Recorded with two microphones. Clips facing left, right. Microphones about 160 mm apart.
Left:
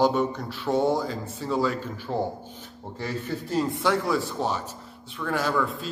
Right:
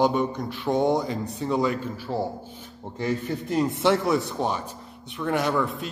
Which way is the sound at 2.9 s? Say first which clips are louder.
Right 4 dB; 20° right (ahead or behind).